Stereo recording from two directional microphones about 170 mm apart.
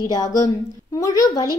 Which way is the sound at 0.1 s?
20° left (ahead or behind).